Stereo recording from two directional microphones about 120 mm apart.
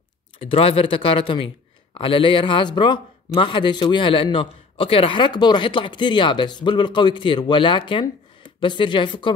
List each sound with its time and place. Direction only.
0.4 s a man's voice: 50° left (ahead or behind)